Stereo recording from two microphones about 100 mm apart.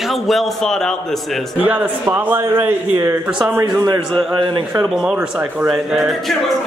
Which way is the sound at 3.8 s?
45° right (ahead or behind).